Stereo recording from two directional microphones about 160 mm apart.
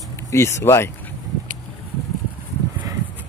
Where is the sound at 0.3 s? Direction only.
15° left (ahead or behind).